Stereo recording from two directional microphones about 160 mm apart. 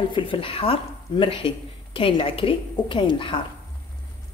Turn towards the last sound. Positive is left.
turn(degrees=30)  # may be behind; listen again after turning